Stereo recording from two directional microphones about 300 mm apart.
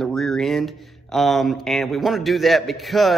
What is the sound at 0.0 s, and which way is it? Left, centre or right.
A man's voice, centre.